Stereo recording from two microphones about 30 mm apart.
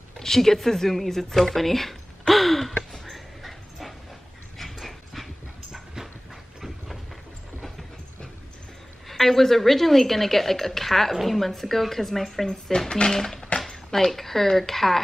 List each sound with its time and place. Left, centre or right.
0.2 s speech: centre
2.9 s dog: centre
9.1 s speech: centre
12.7 s speech: left; by 15.0 s centre